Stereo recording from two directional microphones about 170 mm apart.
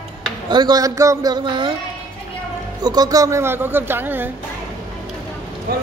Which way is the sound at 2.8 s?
25° right (ahead or behind).